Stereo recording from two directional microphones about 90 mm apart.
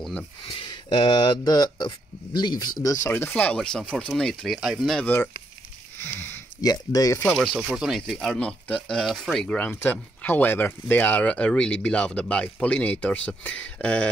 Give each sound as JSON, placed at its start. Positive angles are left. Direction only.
{"t": 0.7, "sound": "speech", "side_deg": 55}
{"t": 3.1, "sound": "speech", "side_deg": 25}
{"t": 3.5, "sound": "speech", "side_deg": 5}
{"t": 5.0, "sound": "speech", "side_deg": 20}
{"t": 5.9, "sound": "a sound", "side_deg": 25}
{"t": 6.6, "sound": "speech", "side_deg": 45}
{"t": 7.3, "sound": "speech", "side_deg": -5}
{"t": 9.6, "sound": "speech", "side_deg": 20}